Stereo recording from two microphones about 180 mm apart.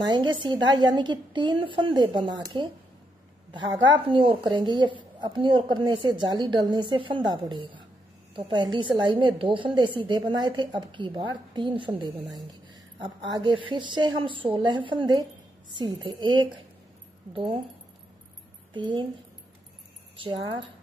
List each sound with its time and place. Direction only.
0.0 s a woman's voice: 25° right (ahead or behind)
13.0 s a woman's voice: 25° right (ahead or behind)
20.2 s a woman's voice: 30° right (ahead or behind)